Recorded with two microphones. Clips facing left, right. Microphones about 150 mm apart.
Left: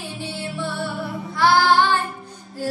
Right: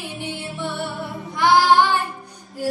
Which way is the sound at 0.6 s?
20° right (ahead or behind).